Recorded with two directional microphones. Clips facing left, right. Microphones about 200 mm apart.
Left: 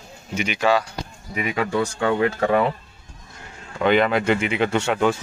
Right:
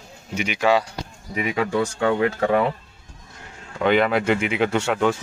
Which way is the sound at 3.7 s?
Centre (ahead or behind).